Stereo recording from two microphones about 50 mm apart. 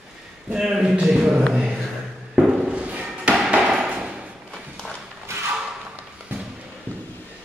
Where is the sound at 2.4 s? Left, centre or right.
Centre.